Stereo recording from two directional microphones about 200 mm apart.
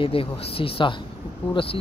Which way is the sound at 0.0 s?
25° left (ahead or behind).